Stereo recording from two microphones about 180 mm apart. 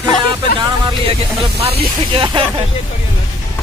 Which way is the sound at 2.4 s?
30° right (ahead or behind).